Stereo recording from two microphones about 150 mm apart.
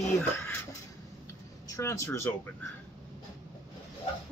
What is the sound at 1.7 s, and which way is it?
Speech, 20° left (ahead or behind).